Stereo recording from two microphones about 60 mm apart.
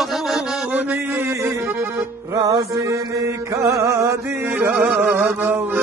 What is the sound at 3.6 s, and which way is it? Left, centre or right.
Music, right.